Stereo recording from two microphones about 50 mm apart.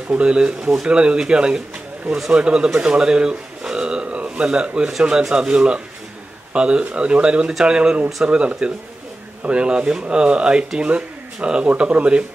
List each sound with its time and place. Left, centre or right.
0.1 s a man's voice: centre